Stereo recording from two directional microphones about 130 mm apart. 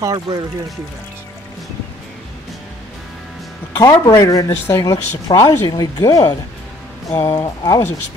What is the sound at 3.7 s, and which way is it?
Speech, 25° left (ahead or behind).